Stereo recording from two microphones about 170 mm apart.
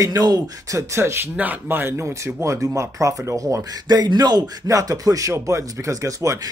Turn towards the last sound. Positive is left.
turn(degrees=-20)  # may be behind; listen again after turning